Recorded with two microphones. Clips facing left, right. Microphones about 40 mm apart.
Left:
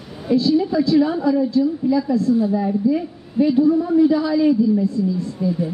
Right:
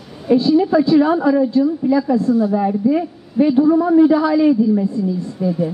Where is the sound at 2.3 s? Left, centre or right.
Right.